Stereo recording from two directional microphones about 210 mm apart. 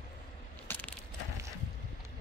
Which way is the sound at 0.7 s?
10° left (ahead or behind).